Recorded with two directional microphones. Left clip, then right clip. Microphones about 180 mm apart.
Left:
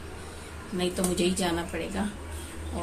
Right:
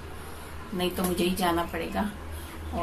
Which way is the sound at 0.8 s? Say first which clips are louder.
Even; 15° left (ahead or behind).